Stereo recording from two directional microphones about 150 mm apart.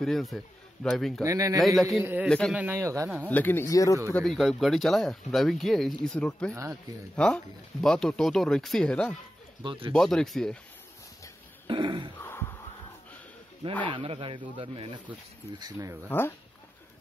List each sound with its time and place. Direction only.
0.0 s speech: centre (ahead or behind)
1.2 s speech: 20° right (ahead or behind)
1.8 s speech: centre (ahead or behind)
2.5 s a man's voice: 15° right (ahead or behind)
3.3 s speech: 10° left (ahead or behind)
4.1 s speech: centre (ahead or behind)
6.5 s speech: 20° right (ahead or behind)
7.2 s speech: 5° left (ahead or behind)
9.6 s speech: 35° right (ahead or behind)
9.9 s speech: 5° left (ahead or behind)
11.6 s speech: 30° right (ahead or behind)
12.2 s a sound: 15° left (ahead or behind)
13.8 s speech: 35° right (ahead or behind)
16.1 s speech: 15° left (ahead or behind)